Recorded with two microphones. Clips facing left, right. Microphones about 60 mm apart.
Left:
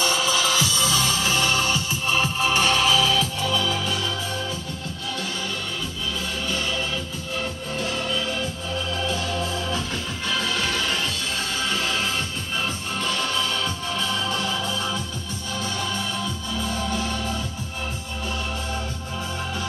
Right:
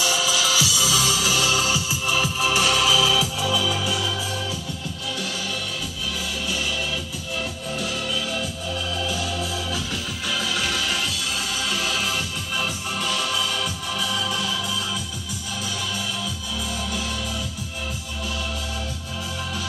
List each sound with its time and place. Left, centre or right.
0.3 s music: centre
9.1 s music: left
10.5 s music: centre
13.6 s music: centre